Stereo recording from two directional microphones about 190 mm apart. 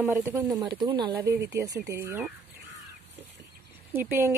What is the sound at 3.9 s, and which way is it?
Speech, 10° right (ahead or behind).